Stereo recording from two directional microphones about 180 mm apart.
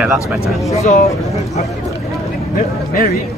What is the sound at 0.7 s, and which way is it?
Speech, 40° left (ahead or behind).